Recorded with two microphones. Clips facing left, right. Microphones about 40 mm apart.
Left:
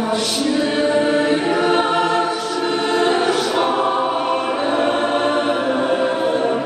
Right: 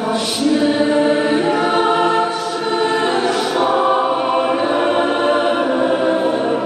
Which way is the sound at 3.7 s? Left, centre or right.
Centre.